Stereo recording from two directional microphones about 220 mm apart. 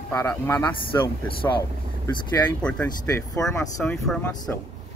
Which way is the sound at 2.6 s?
5° left (ahead or behind).